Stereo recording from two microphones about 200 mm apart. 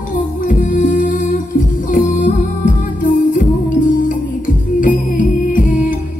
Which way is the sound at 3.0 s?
40° left (ahead or behind).